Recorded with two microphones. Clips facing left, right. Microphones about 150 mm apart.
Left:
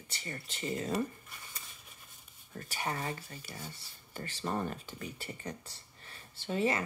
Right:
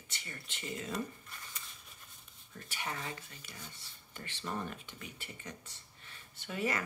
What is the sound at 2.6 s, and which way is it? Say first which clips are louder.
Speech: left 5 dB; 40° left (ahead or behind).